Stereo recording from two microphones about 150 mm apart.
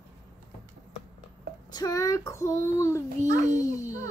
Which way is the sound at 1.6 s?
25° left (ahead or behind).